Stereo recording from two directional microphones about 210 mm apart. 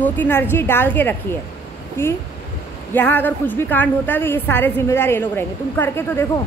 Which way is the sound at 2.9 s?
10° left (ahead or behind).